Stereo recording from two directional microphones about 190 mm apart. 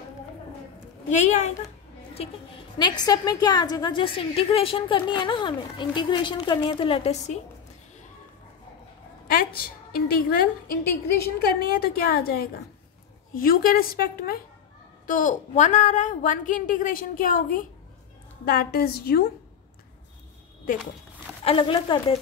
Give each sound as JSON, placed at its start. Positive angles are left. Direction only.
{"t": 1.0, "sound": "a woman's voice", "side_deg": 35}
{"t": 2.8, "sound": "a woman's voice", "side_deg": 20}
{"t": 9.3, "sound": "a woman's voice", "side_deg": 50}
{"t": 21.5, "sound": "a woman's voice", "side_deg": 25}